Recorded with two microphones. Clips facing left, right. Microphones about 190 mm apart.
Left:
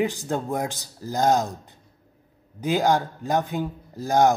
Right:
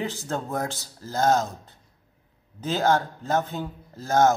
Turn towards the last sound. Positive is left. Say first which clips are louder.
# left 1 dB
turn(degrees=15)  # may be behind; listen again after turning